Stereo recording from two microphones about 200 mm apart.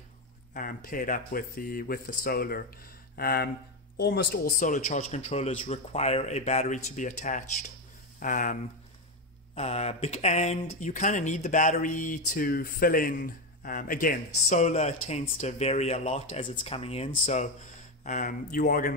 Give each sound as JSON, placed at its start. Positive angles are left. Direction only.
{"t": 0.6, "sound": "speech", "side_deg": 45}
{"t": 9.6, "sound": "speech", "side_deg": 30}